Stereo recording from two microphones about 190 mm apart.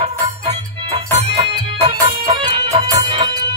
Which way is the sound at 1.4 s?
35° right (ahead or behind).